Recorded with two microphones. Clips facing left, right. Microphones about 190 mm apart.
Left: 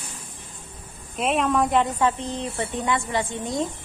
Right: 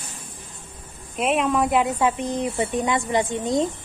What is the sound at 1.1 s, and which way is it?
Speech, centre (ahead or behind).